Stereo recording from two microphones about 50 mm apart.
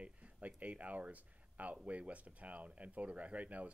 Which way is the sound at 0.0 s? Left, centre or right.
Right.